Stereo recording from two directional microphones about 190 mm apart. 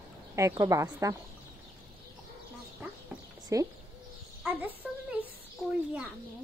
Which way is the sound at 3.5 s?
15° right (ahead or behind).